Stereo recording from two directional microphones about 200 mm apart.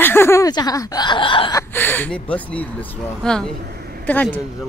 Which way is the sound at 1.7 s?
10° left (ahead or behind).